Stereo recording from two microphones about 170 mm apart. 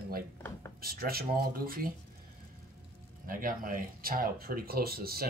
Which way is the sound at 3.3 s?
55° right (ahead or behind).